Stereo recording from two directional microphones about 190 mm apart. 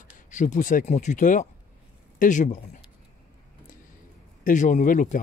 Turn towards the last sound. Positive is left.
turn(degrees=40)  # may be behind; listen again after turning